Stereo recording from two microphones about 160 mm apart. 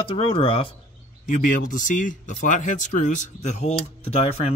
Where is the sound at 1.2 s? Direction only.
55° left (ahead or behind).